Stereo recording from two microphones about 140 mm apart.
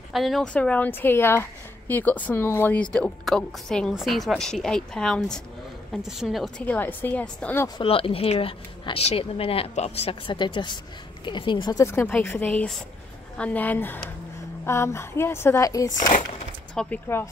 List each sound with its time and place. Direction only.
0.1 s a woman's voice: centre (ahead or behind)
6.6 s a woman's voice: 10° left (ahead or behind)
7.8 s speech: 40° left (ahead or behind)
11.8 s a woman's voice: 15° left (ahead or behind)
16.7 s a woman's voice: 15° left (ahead or behind)